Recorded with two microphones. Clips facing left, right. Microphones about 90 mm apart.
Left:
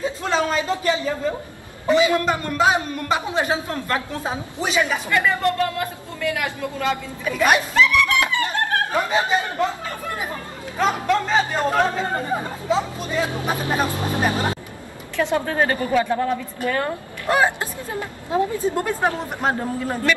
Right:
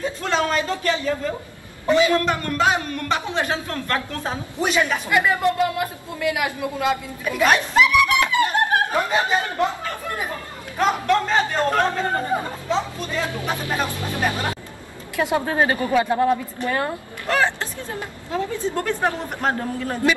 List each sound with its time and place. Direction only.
0.0 s a sound: 5° left (ahead or behind)
0.5 s speech: 10° left (ahead or behind)
4.6 s speech: centre (ahead or behind)
5.1 s speech: 10° right (ahead or behind)
7.7 s music: 15° right (ahead or behind)
10.8 s speech: 5° left (ahead or behind)
12.3 s speech: 5° right (ahead or behind)
13.2 s speech: 20° left (ahead or behind)
15.1 s speech: 15° right (ahead or behind)
17.3 s speech: 15° left (ahead or behind)